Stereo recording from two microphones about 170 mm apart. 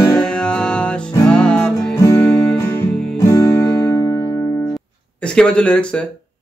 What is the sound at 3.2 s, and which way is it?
Music, 20° left (ahead or behind).